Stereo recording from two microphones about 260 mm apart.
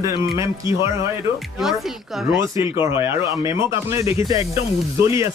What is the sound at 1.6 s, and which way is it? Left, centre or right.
Speech, centre.